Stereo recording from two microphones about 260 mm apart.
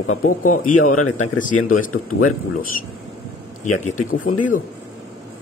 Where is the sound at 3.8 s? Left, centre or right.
Left.